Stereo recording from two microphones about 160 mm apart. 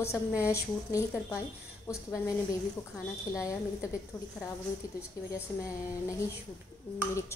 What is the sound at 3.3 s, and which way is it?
Speech, 20° left (ahead or behind).